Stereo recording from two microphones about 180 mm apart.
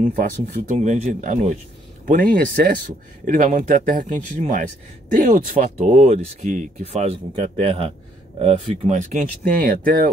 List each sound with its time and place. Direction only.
0.0 s speech: 50° right (ahead or behind)